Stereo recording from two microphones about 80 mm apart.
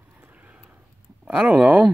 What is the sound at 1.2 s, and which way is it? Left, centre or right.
Speech, centre.